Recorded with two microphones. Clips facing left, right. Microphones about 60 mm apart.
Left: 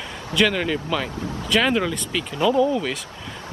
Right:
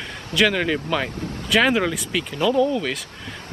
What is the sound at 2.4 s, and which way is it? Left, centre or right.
Speech, centre.